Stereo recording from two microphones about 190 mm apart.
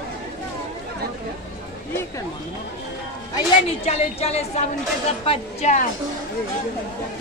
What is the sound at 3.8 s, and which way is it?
A woman's voice, 35° left (ahead or behind).